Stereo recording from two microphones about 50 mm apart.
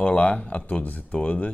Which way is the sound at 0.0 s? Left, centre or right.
Left.